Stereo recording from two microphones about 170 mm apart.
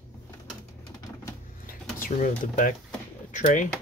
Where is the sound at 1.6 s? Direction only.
55° left (ahead or behind).